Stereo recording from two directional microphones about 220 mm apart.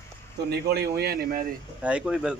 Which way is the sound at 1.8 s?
5° right (ahead or behind).